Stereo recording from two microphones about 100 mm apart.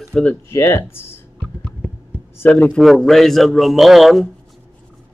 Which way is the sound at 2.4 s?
15° left (ahead or behind).